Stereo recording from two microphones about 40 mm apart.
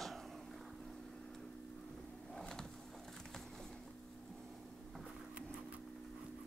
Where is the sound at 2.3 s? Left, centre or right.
Centre.